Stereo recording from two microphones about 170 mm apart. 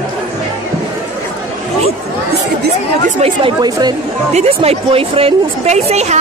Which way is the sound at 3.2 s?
30° right (ahead or behind).